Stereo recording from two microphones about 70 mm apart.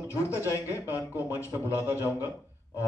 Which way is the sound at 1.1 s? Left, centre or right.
Right.